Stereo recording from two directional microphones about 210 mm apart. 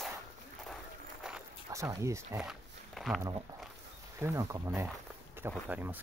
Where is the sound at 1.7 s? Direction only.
15° right (ahead or behind).